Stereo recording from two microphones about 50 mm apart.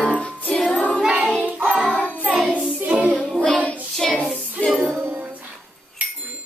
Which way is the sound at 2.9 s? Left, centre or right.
Right.